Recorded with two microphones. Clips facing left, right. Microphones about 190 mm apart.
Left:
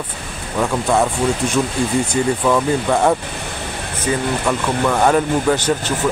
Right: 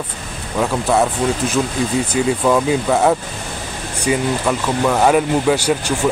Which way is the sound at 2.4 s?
10° right (ahead or behind).